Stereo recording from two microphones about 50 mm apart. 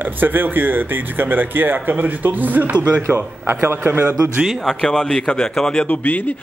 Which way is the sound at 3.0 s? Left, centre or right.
Right.